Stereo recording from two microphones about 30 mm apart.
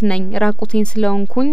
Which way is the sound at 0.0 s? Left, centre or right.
Left.